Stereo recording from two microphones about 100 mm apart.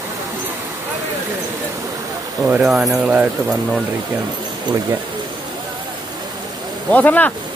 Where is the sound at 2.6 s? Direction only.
5° right (ahead or behind).